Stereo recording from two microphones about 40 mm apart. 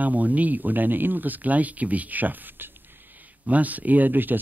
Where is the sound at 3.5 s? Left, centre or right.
Right.